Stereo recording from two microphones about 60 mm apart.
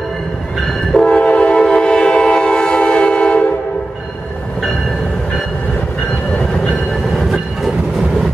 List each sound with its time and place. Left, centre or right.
1.0 s train: left
7.2 s train: centre